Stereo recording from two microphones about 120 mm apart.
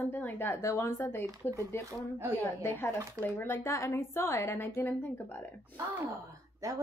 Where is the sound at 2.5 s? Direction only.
20° left (ahead or behind).